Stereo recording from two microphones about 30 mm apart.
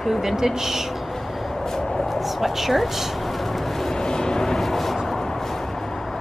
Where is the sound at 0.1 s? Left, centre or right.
Centre.